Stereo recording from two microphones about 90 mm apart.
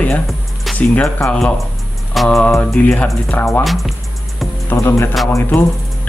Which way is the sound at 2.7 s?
10° left (ahead or behind).